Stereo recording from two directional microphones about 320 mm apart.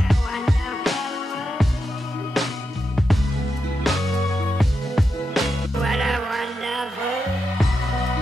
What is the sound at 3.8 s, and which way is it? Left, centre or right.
Music, centre.